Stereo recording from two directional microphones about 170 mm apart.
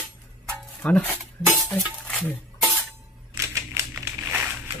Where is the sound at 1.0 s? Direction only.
15° right (ahead or behind).